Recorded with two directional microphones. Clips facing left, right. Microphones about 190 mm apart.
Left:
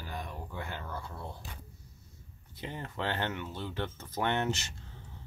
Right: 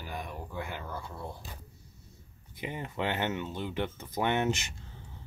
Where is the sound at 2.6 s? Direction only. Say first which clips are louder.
Right 3 dB; 15° right (ahead or behind).